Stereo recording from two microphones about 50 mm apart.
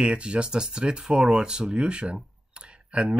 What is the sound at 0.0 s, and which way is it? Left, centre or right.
Speech, right.